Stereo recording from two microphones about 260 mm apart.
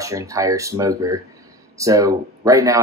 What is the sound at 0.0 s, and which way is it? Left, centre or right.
Speech, centre.